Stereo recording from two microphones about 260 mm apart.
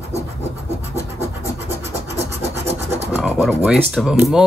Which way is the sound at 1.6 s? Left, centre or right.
Right.